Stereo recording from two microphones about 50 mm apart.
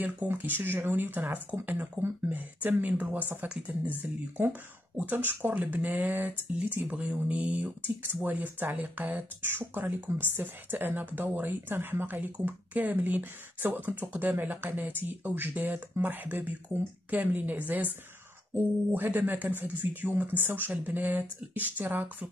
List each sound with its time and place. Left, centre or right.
0.3 s speech: right
6.9 s speech: right
19.0 s speech: right